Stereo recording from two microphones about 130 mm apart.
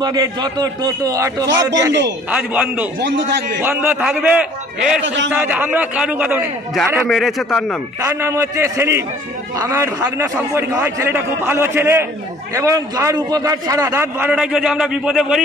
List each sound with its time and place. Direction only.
0.0 s a man's voice: 30° right (ahead or behind)
2.3 s a man's voice: 10° right (ahead or behind)
7.1 s a man's voice: centre (ahead or behind)
8.0 s a man's voice: 20° right (ahead or behind)
14.3 s a man's voice: 5° right (ahead or behind)